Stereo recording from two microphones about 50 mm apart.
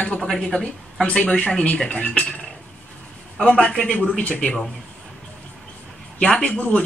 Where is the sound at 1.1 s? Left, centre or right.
Left.